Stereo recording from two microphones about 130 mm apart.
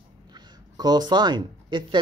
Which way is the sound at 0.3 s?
30° right (ahead or behind).